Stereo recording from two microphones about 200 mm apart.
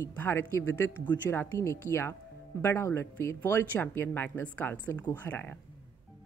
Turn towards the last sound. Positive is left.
turn(degrees=10)  # may be behind; listen again after turning